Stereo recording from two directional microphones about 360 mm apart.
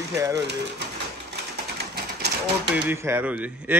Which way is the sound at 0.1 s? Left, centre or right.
Centre.